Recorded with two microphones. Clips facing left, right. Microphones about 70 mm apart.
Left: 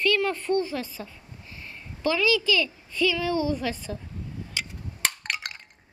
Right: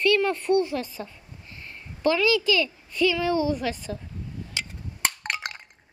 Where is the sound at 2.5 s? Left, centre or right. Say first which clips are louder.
Right 1 dB; right.